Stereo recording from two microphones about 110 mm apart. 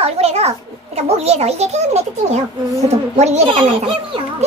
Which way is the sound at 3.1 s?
90° right.